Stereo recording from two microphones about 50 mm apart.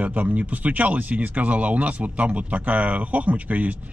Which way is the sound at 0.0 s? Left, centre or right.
Right.